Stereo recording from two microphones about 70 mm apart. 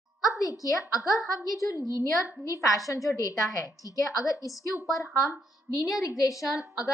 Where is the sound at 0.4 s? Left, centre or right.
Left.